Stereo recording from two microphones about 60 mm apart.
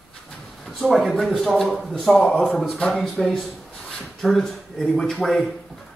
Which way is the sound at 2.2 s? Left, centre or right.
Centre.